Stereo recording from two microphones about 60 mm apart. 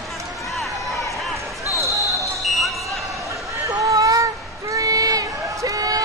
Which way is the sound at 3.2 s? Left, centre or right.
Right.